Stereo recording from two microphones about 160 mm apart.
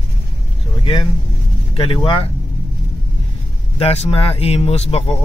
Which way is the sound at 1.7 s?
35° left (ahead or behind).